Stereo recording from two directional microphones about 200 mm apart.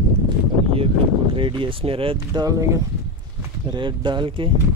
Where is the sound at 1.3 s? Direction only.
25° right (ahead or behind).